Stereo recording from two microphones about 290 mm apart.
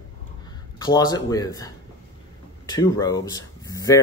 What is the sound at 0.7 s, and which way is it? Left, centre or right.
Speech, centre.